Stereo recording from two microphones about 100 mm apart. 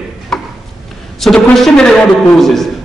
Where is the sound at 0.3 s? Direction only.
5° left (ahead or behind).